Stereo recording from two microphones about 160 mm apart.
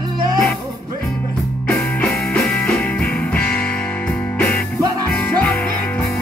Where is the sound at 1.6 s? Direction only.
10° left (ahead or behind).